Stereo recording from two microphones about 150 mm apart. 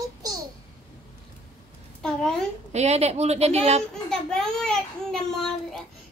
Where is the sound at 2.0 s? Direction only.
5° left (ahead or behind).